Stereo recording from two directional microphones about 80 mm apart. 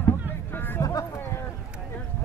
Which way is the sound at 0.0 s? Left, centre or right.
Left.